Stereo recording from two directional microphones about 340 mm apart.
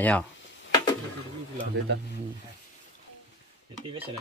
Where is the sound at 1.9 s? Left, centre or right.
Right.